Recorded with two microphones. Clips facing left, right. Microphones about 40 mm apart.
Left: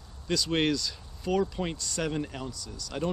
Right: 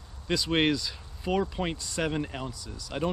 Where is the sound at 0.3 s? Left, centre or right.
Centre.